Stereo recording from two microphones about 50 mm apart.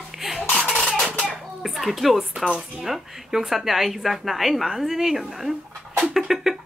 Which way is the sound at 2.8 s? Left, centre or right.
Centre.